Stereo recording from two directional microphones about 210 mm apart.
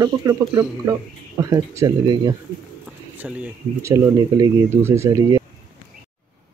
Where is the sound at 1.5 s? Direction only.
15° right (ahead or behind).